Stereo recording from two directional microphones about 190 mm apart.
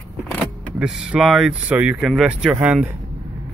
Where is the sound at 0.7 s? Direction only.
5° right (ahead or behind).